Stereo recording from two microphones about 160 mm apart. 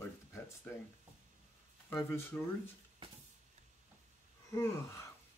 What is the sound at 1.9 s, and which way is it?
Speech, 15° left (ahead or behind).